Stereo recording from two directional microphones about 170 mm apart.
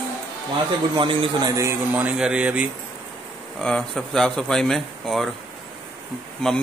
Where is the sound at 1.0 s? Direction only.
30° right (ahead or behind).